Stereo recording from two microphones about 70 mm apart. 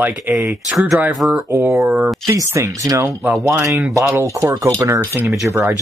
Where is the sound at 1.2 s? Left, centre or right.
Centre.